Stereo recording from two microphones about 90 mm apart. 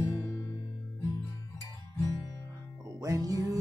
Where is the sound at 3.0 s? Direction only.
45° right (ahead or behind).